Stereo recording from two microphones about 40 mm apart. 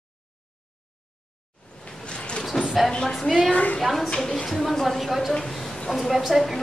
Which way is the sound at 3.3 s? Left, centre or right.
Centre.